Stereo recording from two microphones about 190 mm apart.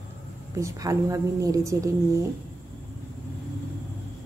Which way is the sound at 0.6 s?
20° right (ahead or behind).